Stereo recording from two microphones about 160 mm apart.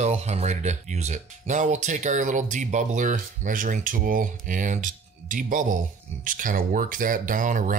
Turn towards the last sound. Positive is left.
turn(degrees=-55)  # may be behind; listen again after turning